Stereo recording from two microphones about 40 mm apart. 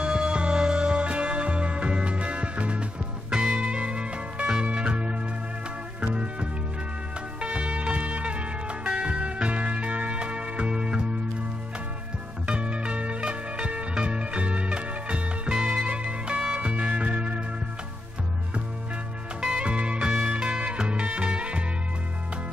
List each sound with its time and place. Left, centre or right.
0.0 s music: right
3.3 s music: centre
3.5 s music: right
7.3 s music: right
12.4 s music: right
15.8 s music: right
19.4 s music: right